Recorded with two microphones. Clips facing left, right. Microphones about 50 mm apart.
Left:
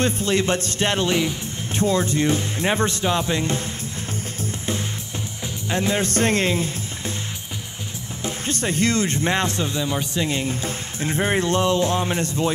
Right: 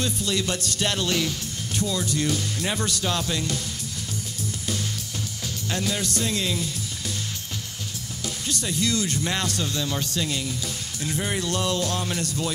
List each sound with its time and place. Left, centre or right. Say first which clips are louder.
0.0 s speech: left 6 dB; left
1.8 s speech: left 6 dB; left
5.7 s speech: left 6 dB; left
8.2 s speech: left 5 dB; left